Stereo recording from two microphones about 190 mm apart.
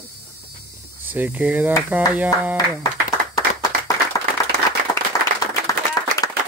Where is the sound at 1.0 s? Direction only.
10° right (ahead or behind).